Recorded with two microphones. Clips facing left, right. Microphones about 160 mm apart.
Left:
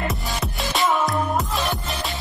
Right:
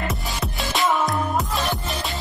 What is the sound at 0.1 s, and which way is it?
Music, centre (ahead or behind).